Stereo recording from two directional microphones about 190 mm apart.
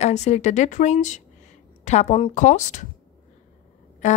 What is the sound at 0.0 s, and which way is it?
A woman's voice, 35° left (ahead or behind).